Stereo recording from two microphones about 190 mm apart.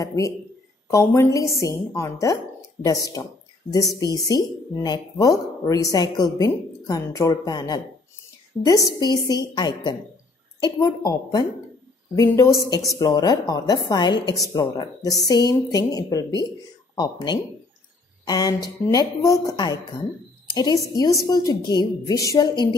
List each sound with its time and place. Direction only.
0.0 s a woman's voice: 15° left (ahead or behind)